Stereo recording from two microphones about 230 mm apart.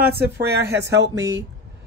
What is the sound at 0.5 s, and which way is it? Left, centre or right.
Speech, right.